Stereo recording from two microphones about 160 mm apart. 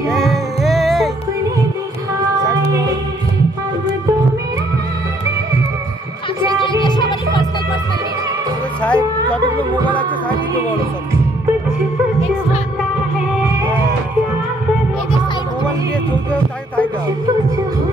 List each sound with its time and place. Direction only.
0.1 s music: centre (ahead or behind)
6.6 s music: 30° left (ahead or behind)
8.8 s music: 10° left (ahead or behind)
9.7 s music: 30° right (ahead or behind)